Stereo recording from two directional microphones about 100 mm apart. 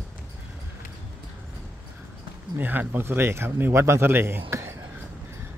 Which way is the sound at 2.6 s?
20° right (ahead or behind).